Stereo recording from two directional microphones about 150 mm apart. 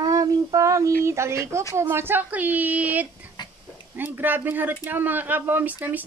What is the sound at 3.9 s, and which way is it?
Speech, 15° right (ahead or behind).